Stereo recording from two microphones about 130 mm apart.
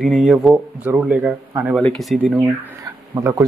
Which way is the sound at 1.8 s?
5° left (ahead or behind).